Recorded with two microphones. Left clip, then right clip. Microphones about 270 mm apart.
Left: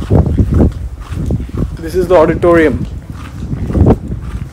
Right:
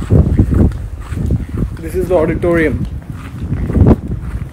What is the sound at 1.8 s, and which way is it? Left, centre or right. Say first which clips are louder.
Speech: left 5 dB; centre.